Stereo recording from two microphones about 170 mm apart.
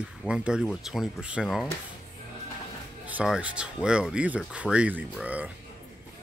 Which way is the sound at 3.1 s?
5° right (ahead or behind).